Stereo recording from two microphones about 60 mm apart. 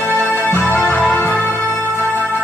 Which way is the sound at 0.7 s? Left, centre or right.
Left.